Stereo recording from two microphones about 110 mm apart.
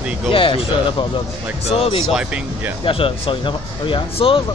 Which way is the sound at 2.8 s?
55° left (ahead or behind).